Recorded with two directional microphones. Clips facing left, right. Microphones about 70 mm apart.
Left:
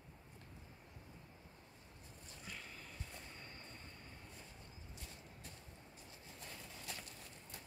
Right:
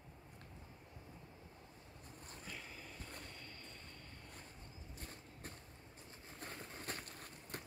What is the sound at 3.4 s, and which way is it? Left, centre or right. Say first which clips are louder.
Train: even; left.